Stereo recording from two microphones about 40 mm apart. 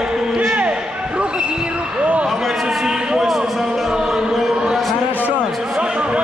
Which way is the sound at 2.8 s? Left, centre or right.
Centre.